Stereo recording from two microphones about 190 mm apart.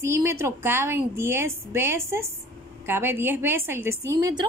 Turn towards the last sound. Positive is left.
turn(degrees=-15)  # may be behind; listen again after turning